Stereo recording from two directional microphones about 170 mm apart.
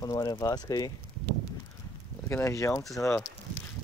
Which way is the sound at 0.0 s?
20° left (ahead or behind).